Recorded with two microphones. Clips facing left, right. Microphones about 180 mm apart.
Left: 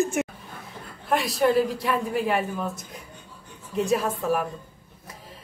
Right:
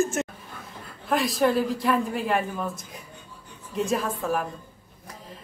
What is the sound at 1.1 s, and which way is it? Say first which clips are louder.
A woman's voice: left 1 dB; centre (ahead or behind).